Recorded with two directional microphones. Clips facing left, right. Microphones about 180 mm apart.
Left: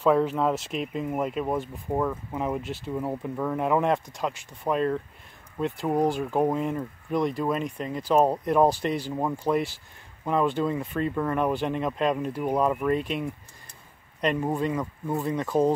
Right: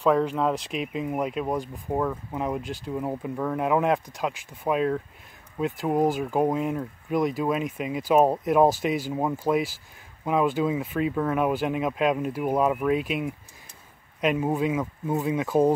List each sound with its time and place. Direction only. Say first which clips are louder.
0.0 s speech: even; centre (ahead or behind)